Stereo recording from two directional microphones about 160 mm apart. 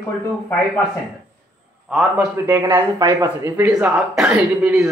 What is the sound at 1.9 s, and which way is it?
Speech, 5° right (ahead or behind).